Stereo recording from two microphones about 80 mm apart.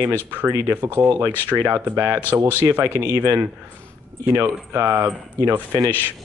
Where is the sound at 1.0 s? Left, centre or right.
Right.